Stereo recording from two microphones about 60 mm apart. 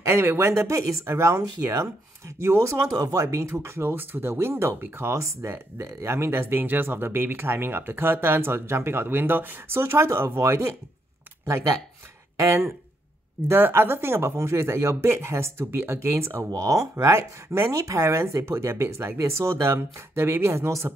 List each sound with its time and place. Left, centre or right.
0.0 s speech: right
2.9 s speech: right
12.4 s speech: right
16.5 s speech: right
16.9 s speech: right